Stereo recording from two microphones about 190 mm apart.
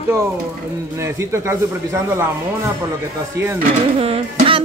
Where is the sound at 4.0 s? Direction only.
30° right (ahead or behind).